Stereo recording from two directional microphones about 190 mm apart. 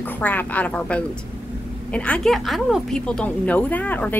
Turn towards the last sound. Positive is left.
turn(degrees=10)  # may be behind; listen again after turning